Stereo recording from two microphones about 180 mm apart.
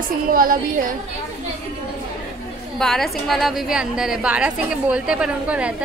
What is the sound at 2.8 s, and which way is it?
Speech, centre (ahead or behind).